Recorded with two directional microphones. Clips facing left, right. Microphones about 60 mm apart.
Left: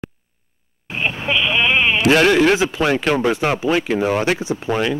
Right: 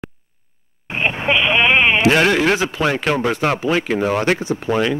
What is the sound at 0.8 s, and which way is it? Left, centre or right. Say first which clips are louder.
Sheep: right 3 dB; right.